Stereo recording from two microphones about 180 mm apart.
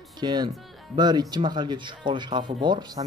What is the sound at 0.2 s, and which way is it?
Speech, 25° right (ahead or behind).